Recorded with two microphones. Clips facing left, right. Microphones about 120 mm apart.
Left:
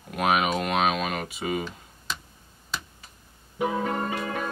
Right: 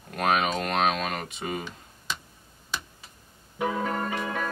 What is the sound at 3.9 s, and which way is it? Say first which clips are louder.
Music: left 1 dB; 25° left (ahead or behind).